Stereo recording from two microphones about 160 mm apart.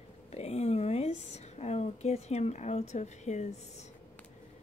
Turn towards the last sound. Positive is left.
turn(degrees=45)  # may be behind; listen again after turning